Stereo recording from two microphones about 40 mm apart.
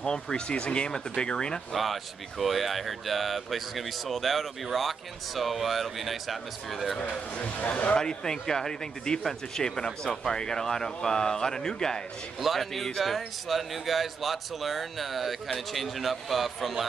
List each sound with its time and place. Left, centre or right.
0.0 s speech: centre
1.7 s speech: centre
7.0 s speech: left
7.9 s speech: centre
12.4 s speech: centre